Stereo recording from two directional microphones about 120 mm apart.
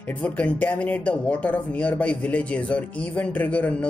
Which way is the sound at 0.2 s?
10° left (ahead or behind).